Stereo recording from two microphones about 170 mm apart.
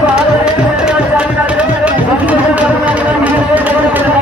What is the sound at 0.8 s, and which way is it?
Music, 5° right (ahead or behind).